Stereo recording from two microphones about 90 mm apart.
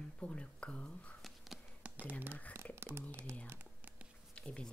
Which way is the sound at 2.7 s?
25° right (ahead or behind).